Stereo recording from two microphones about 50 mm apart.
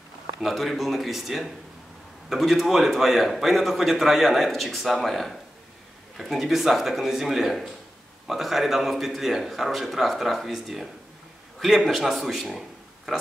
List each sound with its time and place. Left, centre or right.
0.4 s a man's voice: centre